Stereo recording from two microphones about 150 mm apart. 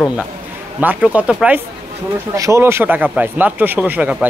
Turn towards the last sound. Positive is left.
turn(degrees=-10)  # may be behind; listen again after turning